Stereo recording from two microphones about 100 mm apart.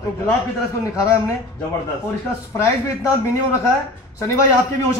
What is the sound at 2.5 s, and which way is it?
Speech, 35° left (ahead or behind).